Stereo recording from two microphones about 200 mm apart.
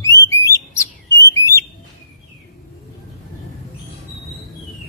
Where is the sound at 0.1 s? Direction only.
55° left (ahead or behind).